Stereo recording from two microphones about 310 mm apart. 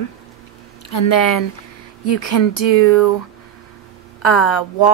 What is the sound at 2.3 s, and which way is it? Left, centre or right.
Speech, left.